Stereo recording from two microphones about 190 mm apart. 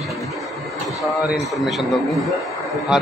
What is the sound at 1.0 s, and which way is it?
A man's voice, centre (ahead or behind).